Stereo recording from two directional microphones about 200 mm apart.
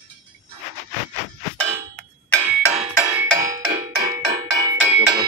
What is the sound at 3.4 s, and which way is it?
Music, 15° right (ahead or behind).